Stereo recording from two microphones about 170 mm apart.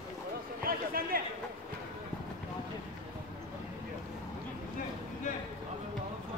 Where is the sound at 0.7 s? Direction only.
60° right (ahead or behind).